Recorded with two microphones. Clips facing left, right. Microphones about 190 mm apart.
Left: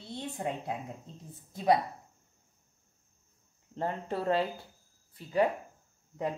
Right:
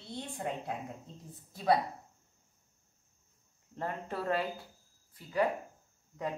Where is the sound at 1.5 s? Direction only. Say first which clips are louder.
Left 2 dB; 20° left (ahead or behind).